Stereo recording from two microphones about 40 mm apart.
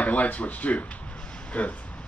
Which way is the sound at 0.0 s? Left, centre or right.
Left.